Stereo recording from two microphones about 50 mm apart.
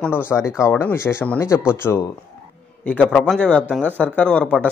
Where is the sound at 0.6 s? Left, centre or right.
Left.